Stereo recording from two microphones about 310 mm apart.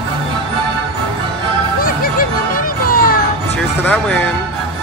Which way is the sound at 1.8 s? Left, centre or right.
Left.